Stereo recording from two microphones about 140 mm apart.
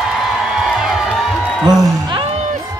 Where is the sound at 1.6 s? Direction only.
5° right (ahead or behind).